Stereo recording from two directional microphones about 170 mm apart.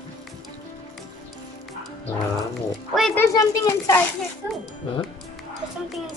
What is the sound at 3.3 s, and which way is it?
Speech, 20° left (ahead or behind).